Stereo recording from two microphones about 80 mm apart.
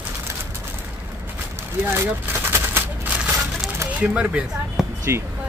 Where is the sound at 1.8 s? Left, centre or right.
Right.